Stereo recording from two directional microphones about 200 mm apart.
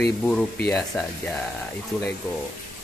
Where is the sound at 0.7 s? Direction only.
5° left (ahead or behind).